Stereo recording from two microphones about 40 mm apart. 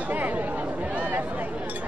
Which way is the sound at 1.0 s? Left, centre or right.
Right.